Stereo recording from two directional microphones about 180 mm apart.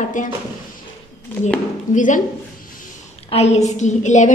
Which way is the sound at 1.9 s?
45° left (ahead or behind).